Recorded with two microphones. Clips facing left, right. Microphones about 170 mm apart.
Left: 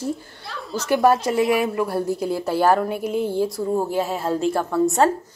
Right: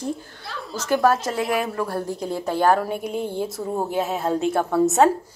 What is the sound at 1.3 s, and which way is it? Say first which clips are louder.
A woman's voice: left 4 dB; centre (ahead or behind).